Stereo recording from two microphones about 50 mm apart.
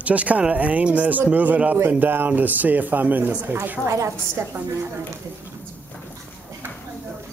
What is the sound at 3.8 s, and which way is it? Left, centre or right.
Speech, right.